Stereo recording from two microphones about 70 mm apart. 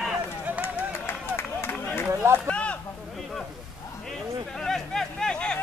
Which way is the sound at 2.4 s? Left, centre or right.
Centre.